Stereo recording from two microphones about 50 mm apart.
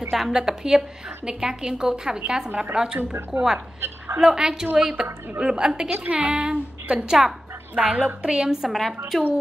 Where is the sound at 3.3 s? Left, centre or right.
Right.